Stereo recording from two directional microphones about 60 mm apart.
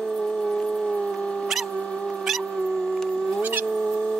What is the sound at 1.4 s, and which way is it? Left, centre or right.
Dog, centre.